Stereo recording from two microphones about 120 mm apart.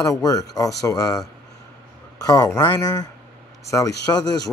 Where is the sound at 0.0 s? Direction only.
30° left (ahead or behind).